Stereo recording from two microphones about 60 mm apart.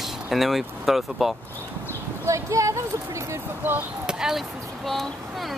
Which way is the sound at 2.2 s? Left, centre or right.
Right.